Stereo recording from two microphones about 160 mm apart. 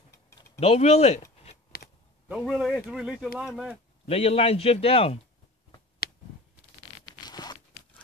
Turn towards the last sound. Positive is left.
turn(degrees=25)  # may be behind; listen again after turning